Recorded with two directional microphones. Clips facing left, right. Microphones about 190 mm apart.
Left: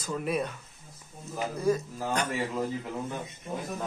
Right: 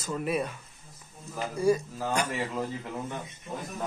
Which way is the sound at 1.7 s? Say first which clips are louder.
Right 2 dB; 10° right (ahead or behind).